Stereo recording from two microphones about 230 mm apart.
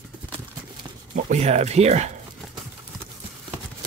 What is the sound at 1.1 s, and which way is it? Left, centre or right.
Speech, right.